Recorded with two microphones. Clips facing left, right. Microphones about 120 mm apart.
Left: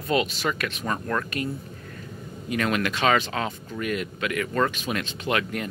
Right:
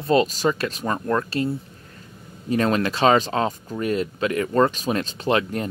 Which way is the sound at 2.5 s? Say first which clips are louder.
Right 5 dB; 35° right (ahead or behind).